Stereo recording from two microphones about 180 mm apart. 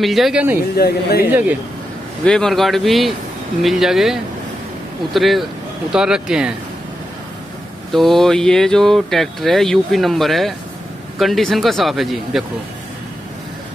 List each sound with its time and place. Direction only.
0.0 s speech: centre (ahead or behind)
0.7 s speech: 60° left (ahead or behind)
1.3 s a man's voice: 5° right (ahead or behind)
2.2 s speech: 5° left (ahead or behind)
7.9 s speech: centre (ahead or behind)